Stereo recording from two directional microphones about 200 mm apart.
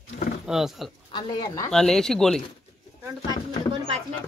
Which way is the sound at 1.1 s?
20° left (ahead or behind).